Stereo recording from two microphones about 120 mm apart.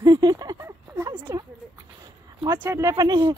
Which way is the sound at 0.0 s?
35° right (ahead or behind).